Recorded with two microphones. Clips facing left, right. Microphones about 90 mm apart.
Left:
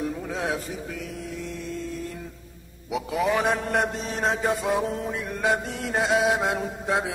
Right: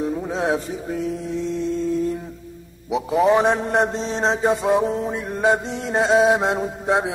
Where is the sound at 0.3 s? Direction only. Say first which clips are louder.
Right 7 dB; 25° right (ahead or behind).